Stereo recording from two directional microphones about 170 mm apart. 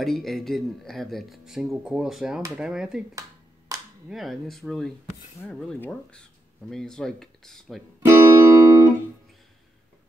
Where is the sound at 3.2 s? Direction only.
20° right (ahead or behind).